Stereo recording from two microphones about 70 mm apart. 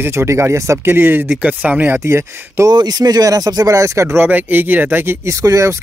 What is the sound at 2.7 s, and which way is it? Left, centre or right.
Speech, right.